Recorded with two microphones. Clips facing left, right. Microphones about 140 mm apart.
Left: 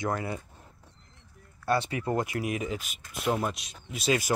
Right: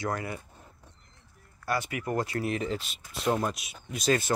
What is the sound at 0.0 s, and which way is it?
Speech, 20° left (ahead or behind).